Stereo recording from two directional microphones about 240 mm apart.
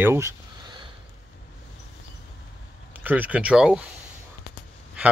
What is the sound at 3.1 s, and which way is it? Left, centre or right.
Speech, centre.